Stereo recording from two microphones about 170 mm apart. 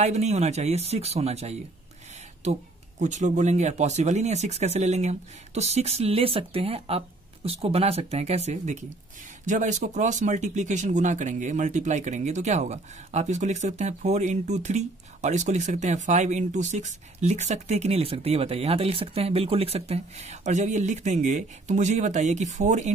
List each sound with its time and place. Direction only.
0.0 s speech: 40° right (ahead or behind)
3.0 s speech: 45° right (ahead or behind)